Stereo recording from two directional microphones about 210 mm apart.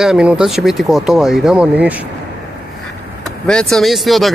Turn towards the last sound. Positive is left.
turn(degrees=0)  # may be behind; listen again after turning